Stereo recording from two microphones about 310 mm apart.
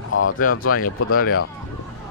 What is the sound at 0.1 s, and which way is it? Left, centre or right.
Speech, left.